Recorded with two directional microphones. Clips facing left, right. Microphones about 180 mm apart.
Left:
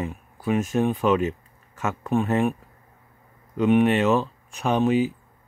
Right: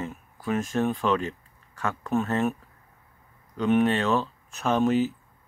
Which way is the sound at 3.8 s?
15° left (ahead or behind).